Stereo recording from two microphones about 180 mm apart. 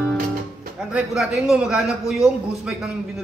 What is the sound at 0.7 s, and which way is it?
A man's voice, 5° right (ahead or behind).